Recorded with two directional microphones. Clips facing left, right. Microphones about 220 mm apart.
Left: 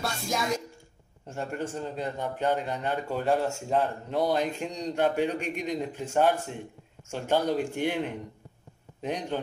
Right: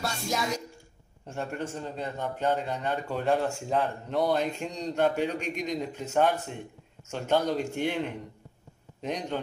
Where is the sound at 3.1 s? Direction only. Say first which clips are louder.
Even; centre (ahead or behind).